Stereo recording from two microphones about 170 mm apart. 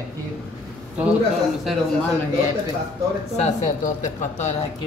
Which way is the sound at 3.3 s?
45° left (ahead or behind).